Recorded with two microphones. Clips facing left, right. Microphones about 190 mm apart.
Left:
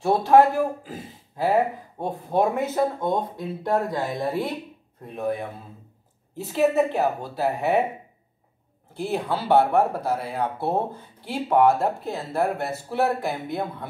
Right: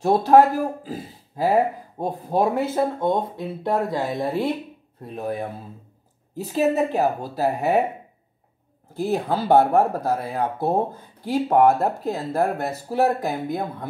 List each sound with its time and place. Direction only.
0.0 s speech: 40° right (ahead or behind)
5.1 s speech: 40° right (ahead or behind)
8.9 s speech: 40° right (ahead or behind)